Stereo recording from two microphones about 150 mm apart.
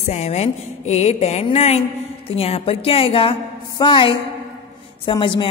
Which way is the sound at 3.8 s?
35° left (ahead or behind).